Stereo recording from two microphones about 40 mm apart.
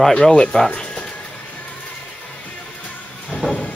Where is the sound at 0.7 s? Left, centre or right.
Left.